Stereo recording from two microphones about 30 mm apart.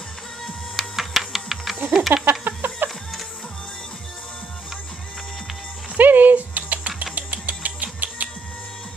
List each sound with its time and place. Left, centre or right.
0.7 s music: centre
2.8 s music: right
5.9 s music: right